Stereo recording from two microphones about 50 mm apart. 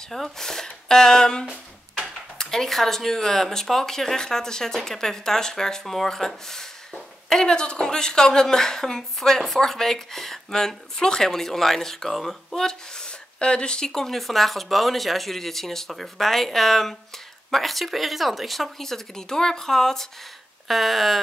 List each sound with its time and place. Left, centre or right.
0.1 s speech: centre